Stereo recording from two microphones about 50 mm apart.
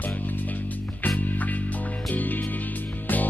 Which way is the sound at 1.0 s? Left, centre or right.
Left.